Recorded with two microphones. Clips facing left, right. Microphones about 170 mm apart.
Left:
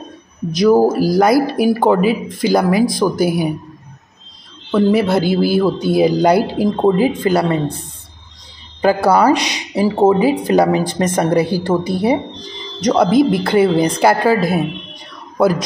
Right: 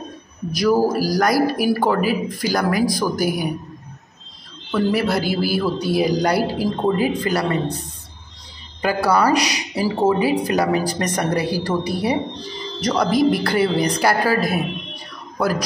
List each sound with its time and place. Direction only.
0.5 s speech: 20° left (ahead or behind)
4.6 s speech: 25° left (ahead or behind)
8.8 s speech: 25° left (ahead or behind)